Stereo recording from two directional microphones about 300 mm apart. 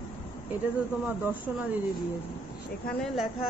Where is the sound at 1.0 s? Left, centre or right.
Centre.